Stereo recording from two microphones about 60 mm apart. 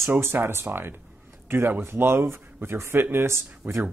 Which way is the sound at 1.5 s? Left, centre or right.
Right.